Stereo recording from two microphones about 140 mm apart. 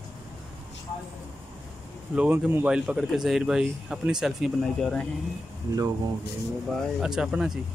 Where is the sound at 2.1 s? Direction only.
10° right (ahead or behind).